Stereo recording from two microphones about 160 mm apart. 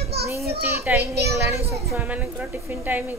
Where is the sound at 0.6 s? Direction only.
15° right (ahead or behind).